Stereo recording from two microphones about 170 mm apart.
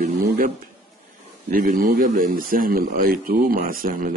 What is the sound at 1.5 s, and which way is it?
A man's voice, 55° right (ahead or behind).